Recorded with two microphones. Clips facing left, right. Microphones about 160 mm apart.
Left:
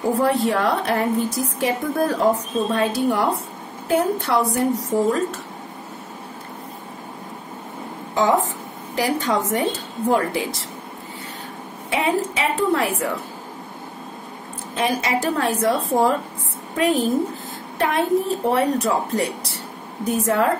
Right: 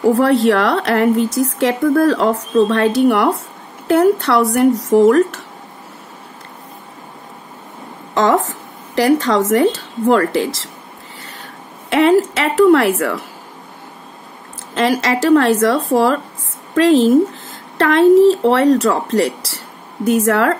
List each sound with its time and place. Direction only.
0.0 s a woman's voice: 85° right
8.1 s speech: 85° right
11.9 s a woman's voice: 90° right
14.7 s a woman's voice: 90° right